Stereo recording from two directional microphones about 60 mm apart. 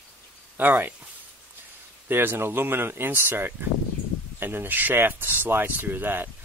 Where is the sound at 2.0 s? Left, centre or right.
Right.